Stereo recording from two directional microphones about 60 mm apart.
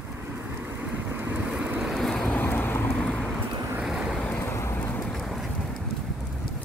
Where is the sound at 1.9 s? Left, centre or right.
Centre.